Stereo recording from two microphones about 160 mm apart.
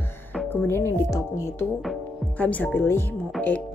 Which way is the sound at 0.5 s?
15° left (ahead or behind).